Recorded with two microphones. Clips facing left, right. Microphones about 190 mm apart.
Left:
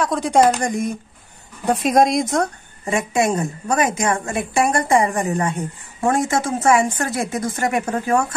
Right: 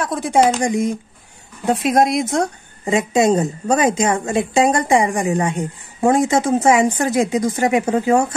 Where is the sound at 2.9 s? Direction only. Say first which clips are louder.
Right 4 dB; 20° right (ahead or behind).